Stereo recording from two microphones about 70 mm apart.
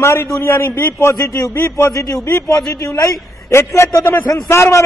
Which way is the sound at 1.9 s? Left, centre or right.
Left.